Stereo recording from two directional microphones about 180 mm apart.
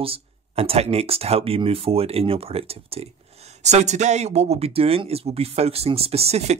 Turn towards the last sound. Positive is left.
turn(degrees=-35)  # may be behind; listen again after turning